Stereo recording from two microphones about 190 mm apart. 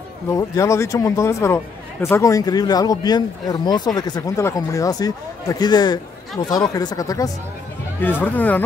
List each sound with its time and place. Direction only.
0.3 s speech: 15° left (ahead or behind)